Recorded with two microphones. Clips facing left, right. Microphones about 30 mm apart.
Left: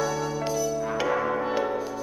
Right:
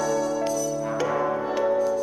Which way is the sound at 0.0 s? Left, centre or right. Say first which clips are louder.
Right 3 dB; centre.